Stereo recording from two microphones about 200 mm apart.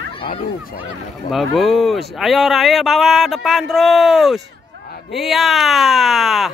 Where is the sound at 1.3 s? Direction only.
Centre (ahead or behind).